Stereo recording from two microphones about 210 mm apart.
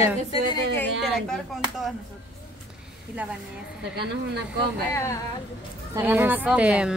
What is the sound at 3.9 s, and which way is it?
Speech, 50° right (ahead or behind).